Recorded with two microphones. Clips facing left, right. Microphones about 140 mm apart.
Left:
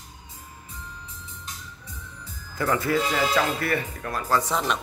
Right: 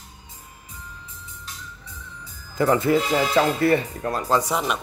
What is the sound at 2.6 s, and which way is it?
Speech, 25° right (ahead or behind).